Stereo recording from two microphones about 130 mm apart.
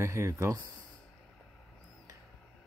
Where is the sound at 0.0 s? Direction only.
20° right (ahead or behind).